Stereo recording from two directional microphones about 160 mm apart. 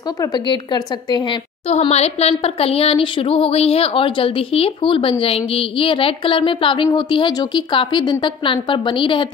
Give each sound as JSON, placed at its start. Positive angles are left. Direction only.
{"t": 0.2, "sound": "a woman's voice", "side_deg": 25}
{"t": 1.7, "sound": "speech", "side_deg": 40}